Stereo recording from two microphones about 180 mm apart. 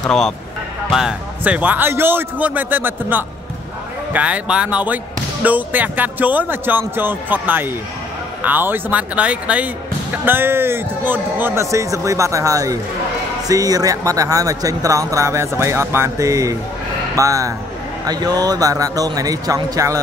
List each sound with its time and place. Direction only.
0.0 s a man's voice: centre (ahead or behind); by 20.0 s 20° right (ahead or behind)